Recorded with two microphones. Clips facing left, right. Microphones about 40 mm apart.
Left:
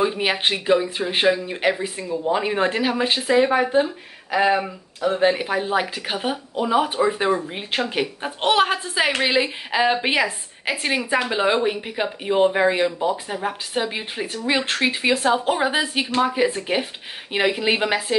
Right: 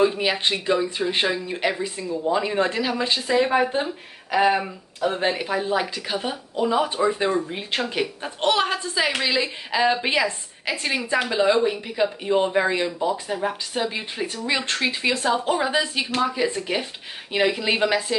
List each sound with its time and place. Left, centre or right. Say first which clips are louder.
0.2 s speech: left 1 dB; left
4.4 s speech: left 1 dB; centre
5.3 s speech: left 2 dB; centre
9.8 s speech: left 1 dB; centre
16.3 s speech: left 3 dB; centre